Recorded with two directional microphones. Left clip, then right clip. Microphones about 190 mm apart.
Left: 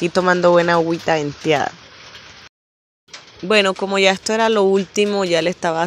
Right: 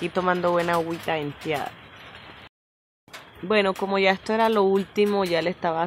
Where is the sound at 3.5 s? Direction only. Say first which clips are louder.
Left 6 dB; 25° left (ahead or behind).